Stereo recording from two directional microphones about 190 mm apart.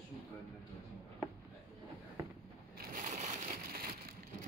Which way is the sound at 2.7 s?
45° right (ahead or behind).